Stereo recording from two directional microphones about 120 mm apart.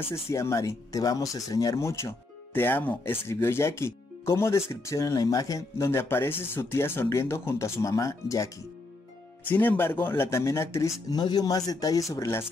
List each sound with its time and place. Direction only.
0.1 s speech: 25° left (ahead or behind)
9.5 s speech: 15° left (ahead or behind)
11.1 s speech: 35° left (ahead or behind)